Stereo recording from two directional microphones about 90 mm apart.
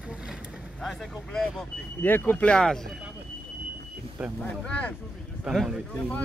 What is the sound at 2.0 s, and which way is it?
Speech, 20° left (ahead or behind).